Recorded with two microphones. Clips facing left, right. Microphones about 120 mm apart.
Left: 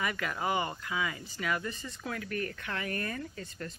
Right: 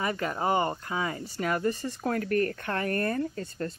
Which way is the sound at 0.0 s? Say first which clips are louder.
Right 5 dB; 35° right (ahead or behind).